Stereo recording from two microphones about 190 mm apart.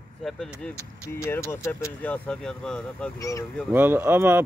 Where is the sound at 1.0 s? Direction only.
15° left (ahead or behind).